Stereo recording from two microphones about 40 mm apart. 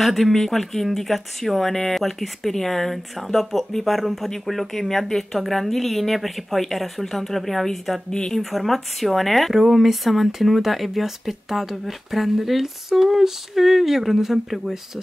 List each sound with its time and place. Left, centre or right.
0.0 s speech: centre
8.1 s speech: left
8.4 s speech: centre